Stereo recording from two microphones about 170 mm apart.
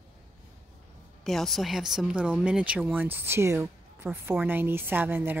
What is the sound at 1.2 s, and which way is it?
Speech, centre (ahead or behind).